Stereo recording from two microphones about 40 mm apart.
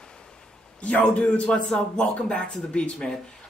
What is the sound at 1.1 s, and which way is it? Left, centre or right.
Speech, left.